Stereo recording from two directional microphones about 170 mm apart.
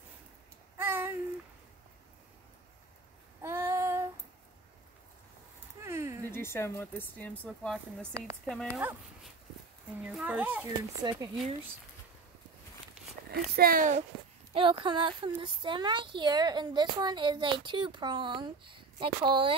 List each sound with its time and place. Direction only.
0.7 s a sound: 15° right (ahead or behind)
3.4 s child singing: 15° right (ahead or behind)
5.9 s a sound: 15° right (ahead or behind)
6.3 s speech: 15° left (ahead or behind)
10.0 s speech: 5° right (ahead or behind)
13.3 s speech: 60° right (ahead or behind)
14.5 s speech: 30° right (ahead or behind)